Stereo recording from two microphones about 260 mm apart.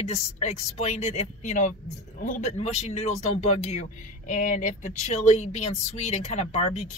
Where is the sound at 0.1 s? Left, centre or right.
Left.